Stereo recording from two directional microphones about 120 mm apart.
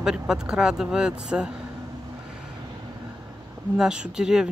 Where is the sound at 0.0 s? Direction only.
5° right (ahead or behind).